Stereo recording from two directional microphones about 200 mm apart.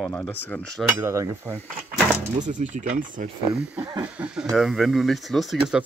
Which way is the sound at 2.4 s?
40° right (ahead or behind).